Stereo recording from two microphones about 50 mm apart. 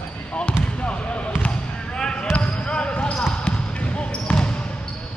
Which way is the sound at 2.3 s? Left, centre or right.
Left.